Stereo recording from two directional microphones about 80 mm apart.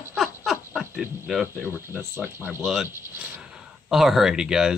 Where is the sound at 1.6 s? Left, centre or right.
Right.